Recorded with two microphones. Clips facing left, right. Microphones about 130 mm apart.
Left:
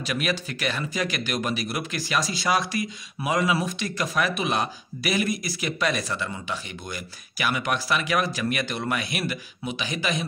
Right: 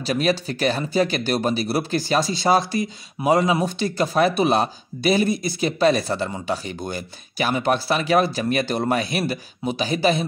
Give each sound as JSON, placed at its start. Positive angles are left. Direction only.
{"t": 0.0, "sound": "speech", "side_deg": -30}